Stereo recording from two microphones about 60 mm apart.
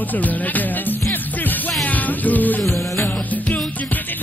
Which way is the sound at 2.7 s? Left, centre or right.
Left.